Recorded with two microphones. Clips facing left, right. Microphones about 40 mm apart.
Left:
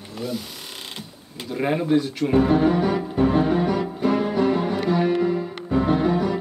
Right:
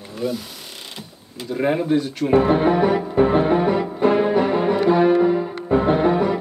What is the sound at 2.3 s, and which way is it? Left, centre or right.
Music, right.